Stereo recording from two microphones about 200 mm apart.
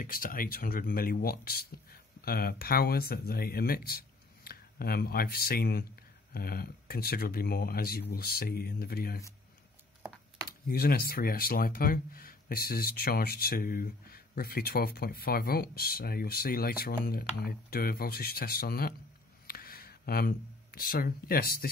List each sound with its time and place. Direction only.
0.0 s speech: 45° left (ahead or behind)
10.7 s speech: 50° left (ahead or behind)
19.4 s a sound: 50° left (ahead or behind)